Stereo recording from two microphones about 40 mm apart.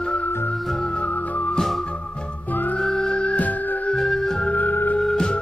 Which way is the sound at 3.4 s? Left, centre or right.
Left.